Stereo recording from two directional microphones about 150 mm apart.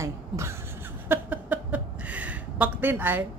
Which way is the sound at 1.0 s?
15° right (ahead or behind).